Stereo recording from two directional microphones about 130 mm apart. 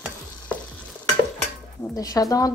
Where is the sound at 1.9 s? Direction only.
30° left (ahead or behind).